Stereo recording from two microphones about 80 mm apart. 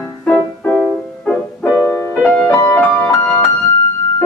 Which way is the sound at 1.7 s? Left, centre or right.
Left.